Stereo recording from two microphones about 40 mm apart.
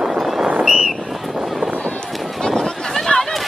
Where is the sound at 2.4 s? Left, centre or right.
Centre.